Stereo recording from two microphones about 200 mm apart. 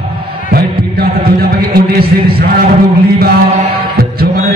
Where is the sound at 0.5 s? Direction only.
50° right (ahead or behind).